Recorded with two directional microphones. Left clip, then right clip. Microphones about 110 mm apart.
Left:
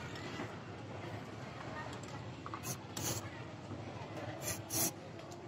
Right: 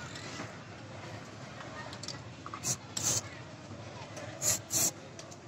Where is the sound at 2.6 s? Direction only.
25° right (ahead or behind).